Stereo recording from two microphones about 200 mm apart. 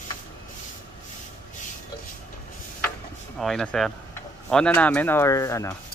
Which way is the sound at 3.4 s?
5° left (ahead or behind).